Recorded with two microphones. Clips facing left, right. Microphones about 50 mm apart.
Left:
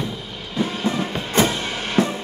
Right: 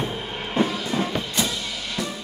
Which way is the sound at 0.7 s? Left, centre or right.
Left.